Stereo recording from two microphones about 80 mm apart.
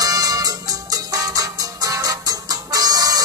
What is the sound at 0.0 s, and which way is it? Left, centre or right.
Music, right.